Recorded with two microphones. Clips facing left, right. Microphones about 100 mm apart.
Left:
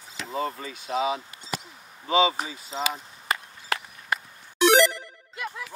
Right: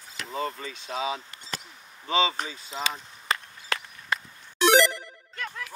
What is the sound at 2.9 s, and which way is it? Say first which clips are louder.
Chop: left 1 dB; 15° left (ahead or behind).